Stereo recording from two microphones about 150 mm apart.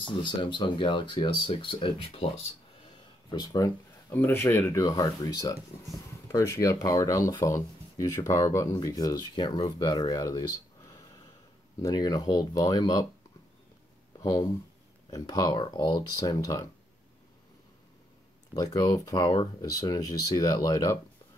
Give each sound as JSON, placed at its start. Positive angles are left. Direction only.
{"t": 0.0, "sound": "speech", "side_deg": 30}
{"t": 3.3, "sound": "speech", "side_deg": 25}
{"t": 4.1, "sound": "speech", "side_deg": 15}
{"t": 15.0, "sound": "speech", "side_deg": 25}
{"t": 18.5, "sound": "speech", "side_deg": 25}